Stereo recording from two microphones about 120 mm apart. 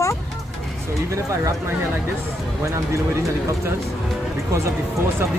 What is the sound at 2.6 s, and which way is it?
Speech, 25° right (ahead or behind).